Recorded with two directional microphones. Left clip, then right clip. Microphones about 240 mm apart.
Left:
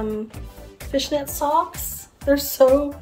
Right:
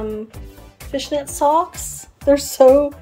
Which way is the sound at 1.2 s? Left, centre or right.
Centre.